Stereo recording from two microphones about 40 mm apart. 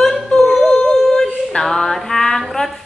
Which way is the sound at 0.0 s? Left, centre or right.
Centre.